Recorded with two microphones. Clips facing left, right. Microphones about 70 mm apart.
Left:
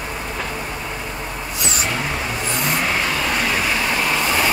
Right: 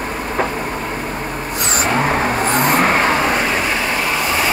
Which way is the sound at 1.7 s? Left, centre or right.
Right.